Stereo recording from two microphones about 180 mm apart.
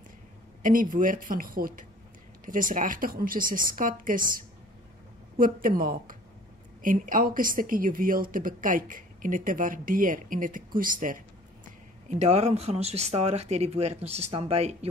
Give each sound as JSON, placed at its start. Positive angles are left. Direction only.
{"t": 0.6, "sound": "speech", "side_deg": -50}